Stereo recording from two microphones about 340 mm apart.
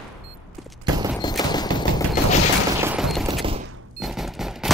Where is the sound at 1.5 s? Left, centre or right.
Centre.